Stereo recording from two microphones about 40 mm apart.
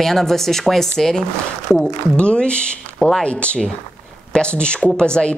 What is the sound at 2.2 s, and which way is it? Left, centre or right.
Speech, left.